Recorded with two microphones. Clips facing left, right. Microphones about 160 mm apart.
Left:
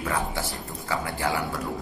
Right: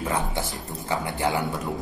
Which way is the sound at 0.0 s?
20° right (ahead or behind).